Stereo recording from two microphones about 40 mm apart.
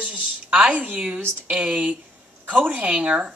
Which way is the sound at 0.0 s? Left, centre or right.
Right.